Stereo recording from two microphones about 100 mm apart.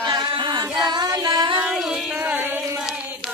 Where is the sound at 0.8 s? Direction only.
45° right (ahead or behind).